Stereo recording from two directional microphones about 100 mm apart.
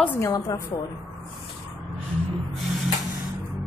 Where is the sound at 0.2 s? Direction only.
35° left (ahead or behind).